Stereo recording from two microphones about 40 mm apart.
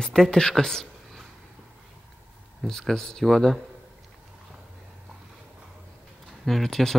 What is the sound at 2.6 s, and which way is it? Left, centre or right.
Speech, centre.